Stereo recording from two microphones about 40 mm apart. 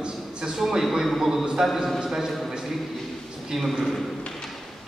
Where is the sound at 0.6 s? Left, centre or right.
Centre.